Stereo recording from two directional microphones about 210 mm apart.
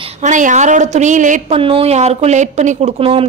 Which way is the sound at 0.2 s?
35° right (ahead or behind).